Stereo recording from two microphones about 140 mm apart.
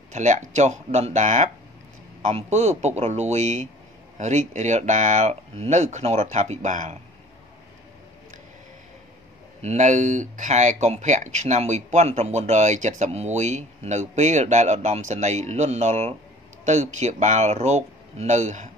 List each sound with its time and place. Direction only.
0.1 s speech: 60° right (ahead or behind)
9.6 s speech: 55° right (ahead or behind)